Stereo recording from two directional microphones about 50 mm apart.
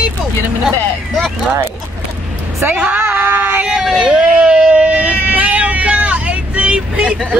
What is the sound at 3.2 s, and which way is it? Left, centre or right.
Child singing, right.